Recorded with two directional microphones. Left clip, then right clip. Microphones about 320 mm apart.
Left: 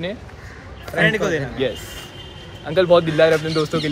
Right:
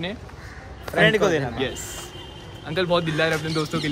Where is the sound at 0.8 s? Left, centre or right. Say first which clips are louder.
Even; right.